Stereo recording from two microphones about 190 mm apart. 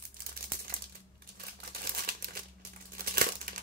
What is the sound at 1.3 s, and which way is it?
Crumpling, 50° right (ahead or behind).